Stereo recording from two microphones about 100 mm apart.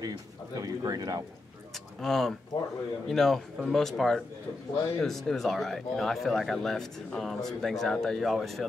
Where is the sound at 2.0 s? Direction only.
5° left (ahead or behind).